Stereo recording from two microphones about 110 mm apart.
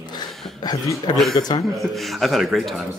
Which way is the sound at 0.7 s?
40° left (ahead or behind).